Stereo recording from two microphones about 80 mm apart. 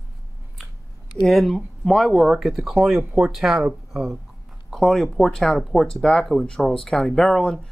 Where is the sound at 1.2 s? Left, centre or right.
Centre.